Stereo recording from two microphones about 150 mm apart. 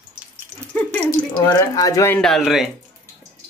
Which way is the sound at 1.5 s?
25° left (ahead or behind).